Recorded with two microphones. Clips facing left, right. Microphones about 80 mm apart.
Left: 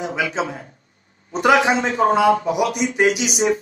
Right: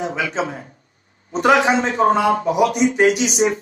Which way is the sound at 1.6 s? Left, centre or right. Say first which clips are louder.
Right 1 dB; right.